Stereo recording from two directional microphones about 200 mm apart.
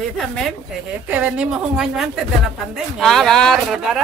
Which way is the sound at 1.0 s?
10° right (ahead or behind).